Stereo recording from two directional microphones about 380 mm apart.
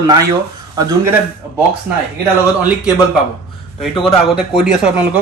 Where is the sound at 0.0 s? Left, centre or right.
Centre.